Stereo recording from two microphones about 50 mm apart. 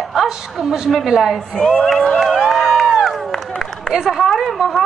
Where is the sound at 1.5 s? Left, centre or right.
Centre.